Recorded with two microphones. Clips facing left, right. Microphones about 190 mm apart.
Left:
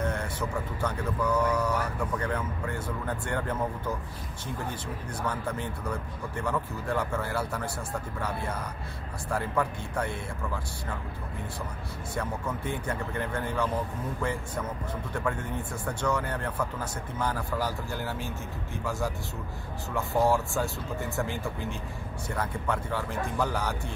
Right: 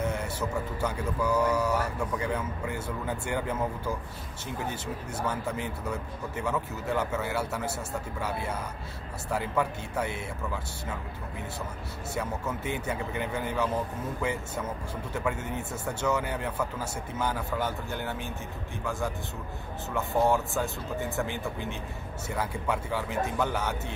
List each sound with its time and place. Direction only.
0.0 s speech: 5° right (ahead or behind)
5.1 s speech: 5° right (ahead or behind)
12.2 s speech: 5° right (ahead or behind)
15.1 s speech: 5° right (ahead or behind)